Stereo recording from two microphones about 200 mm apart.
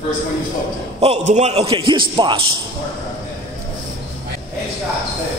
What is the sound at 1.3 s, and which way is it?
A man's voice, 30° right (ahead or behind).